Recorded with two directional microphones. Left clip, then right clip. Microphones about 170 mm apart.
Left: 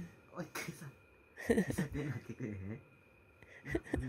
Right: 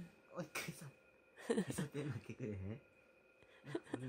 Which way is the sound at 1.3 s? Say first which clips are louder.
Left 6 dB; 5° left (ahead or behind).